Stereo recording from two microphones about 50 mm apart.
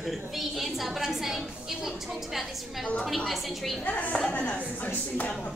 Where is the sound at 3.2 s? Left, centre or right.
Centre.